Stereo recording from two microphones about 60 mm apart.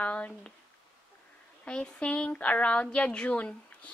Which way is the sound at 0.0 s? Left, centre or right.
Left.